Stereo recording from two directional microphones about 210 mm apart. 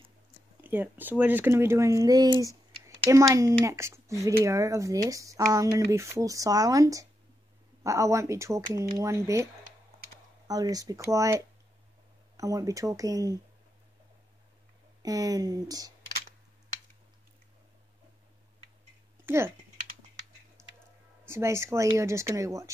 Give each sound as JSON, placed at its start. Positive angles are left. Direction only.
{"t": 0.6, "sound": "speech", "side_deg": -10}
{"t": 15.0, "sound": "speech", "side_deg": -15}
{"t": 19.2, "sound": "speech", "side_deg": -10}
{"t": 20.6, "sound": "squish", "side_deg": -15}
{"t": 21.3, "sound": "speech", "side_deg": -10}